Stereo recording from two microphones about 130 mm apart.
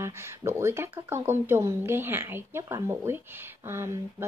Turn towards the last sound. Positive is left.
turn(degrees=-20)  # may be behind; listen again after turning